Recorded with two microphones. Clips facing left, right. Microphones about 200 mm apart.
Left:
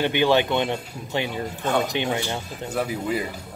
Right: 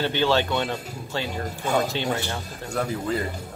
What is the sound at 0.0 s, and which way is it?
Speech, 15° left (ahead or behind).